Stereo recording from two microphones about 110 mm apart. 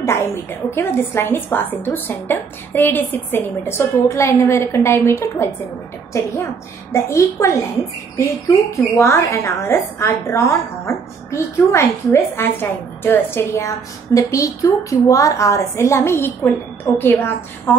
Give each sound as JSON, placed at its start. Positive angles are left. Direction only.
{"t": 0.0, "sound": "a woman's voice", "side_deg": 25}